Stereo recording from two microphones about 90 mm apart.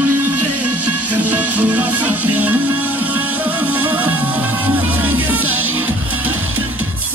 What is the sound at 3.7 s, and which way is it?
Music, 20° right (ahead or behind).